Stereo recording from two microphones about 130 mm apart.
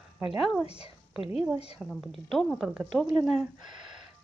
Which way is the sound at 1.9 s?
Centre (ahead or behind).